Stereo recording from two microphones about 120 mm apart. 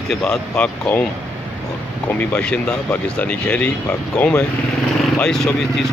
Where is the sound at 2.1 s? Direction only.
10° left (ahead or behind).